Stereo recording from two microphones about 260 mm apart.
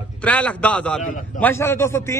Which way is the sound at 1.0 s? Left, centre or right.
Left.